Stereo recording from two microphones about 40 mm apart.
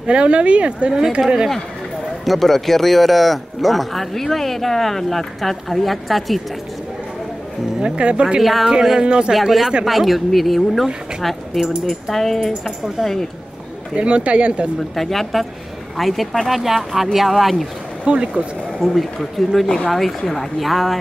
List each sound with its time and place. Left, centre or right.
0.0 s speech: right
2.2 s speech: centre
7.8 s speech: right
8.4 s speech: centre
9.0 s speech: right
9.3 s speech: centre
11.9 s speech: centre
13.9 s speech: right
15.0 s speech: centre
18.0 s speech: right
18.8 s speech: centre